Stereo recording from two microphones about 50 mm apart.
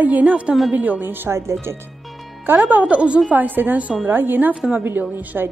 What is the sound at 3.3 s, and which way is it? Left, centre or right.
Speech, right.